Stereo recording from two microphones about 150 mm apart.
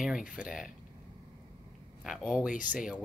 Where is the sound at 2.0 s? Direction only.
5° right (ahead or behind).